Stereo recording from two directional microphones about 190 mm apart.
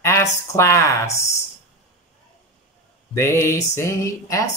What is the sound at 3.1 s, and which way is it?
Speech, 15° left (ahead or behind).